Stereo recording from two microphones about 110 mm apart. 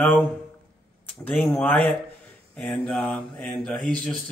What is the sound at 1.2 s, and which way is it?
Speech, 15° left (ahead or behind).